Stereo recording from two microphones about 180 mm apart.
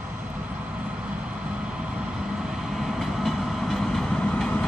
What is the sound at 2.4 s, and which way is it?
Train, 5° right (ahead or behind).